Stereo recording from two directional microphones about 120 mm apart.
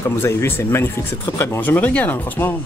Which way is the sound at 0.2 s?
20° left (ahead or behind).